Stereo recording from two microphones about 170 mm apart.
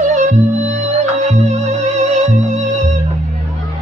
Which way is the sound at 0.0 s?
45° right (ahead or behind).